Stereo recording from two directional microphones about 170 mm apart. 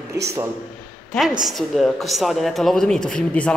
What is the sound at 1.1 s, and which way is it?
A woman's voice, centre (ahead or behind).